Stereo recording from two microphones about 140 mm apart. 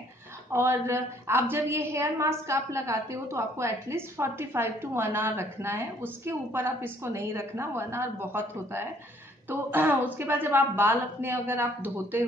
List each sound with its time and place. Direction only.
0.5 s a woman's voice: 20° right (ahead or behind)